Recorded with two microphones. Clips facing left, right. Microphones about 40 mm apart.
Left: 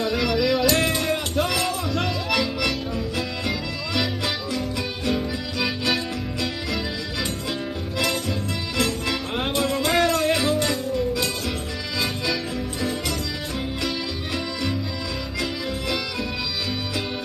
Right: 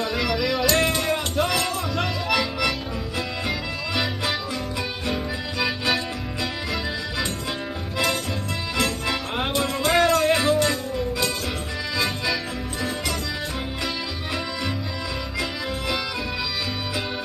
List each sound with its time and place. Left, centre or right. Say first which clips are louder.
0.0 s music: left 2 dB; centre
8.7 s music: even; centre